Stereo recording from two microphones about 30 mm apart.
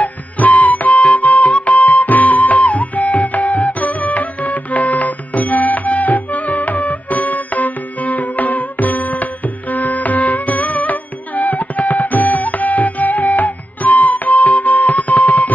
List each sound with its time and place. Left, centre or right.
0.0 s music: left